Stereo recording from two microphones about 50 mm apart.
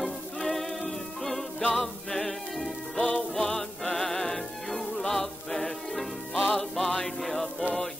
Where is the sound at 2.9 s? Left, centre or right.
Centre.